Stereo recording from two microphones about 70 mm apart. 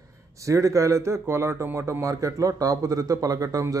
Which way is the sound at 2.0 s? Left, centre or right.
Right.